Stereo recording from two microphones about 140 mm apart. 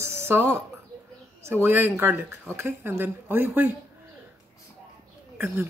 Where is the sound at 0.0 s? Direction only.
15° right (ahead or behind).